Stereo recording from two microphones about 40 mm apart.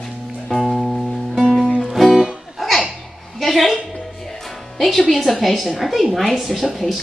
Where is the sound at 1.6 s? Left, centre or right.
Right.